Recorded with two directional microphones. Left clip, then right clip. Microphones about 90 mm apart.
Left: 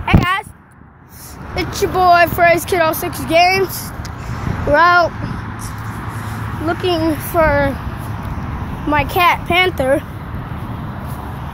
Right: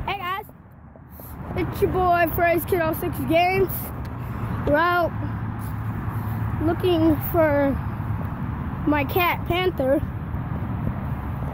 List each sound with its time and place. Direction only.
0.0 s a sound: 20° right (ahead or behind)
1.5 s vehicle: 10° right (ahead or behind)
2.2 s speech: 20° right (ahead or behind)
2.5 s speech: centre (ahead or behind)
3.3 s speech: 20° right (ahead or behind)
4.7 s speech: 15° right (ahead or behind)
6.6 s speech: 30° right (ahead or behind)
8.9 s speech: 30° right (ahead or behind)
9.5 s speech: centre (ahead or behind)